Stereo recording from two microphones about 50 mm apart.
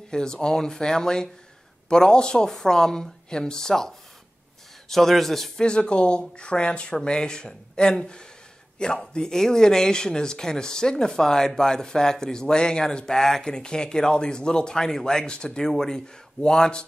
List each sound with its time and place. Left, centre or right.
0.1 s a man's voice: centre
5.6 s speech: centre